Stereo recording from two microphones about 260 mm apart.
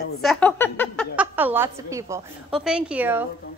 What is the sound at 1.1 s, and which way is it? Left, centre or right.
A woman's voice, centre.